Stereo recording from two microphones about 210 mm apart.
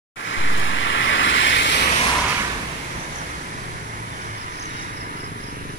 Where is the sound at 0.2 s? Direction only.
60° left (ahead or behind).